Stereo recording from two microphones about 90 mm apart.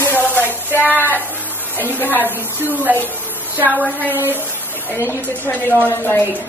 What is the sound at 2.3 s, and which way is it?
A woman's voice, 20° right (ahead or behind).